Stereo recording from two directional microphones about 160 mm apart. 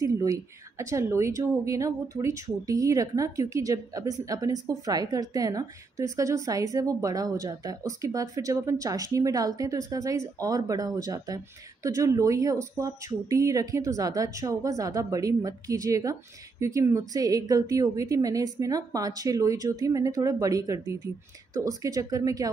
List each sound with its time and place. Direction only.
0.0 s speech: 20° right (ahead or behind)